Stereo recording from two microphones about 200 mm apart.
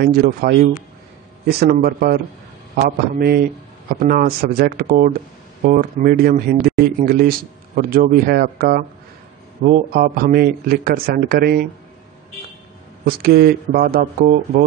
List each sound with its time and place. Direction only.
0.0 s speech: 50° right (ahead or behind)
13.0 s speech: 50° right (ahead or behind)